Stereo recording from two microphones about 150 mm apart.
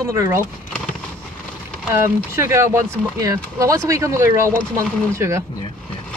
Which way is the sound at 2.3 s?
20° right (ahead or behind).